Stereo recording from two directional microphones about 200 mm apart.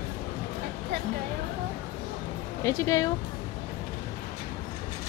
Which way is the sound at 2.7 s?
15° left (ahead or behind).